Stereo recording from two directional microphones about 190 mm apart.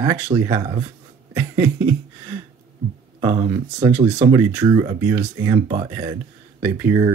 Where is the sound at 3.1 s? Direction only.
20° right (ahead or behind).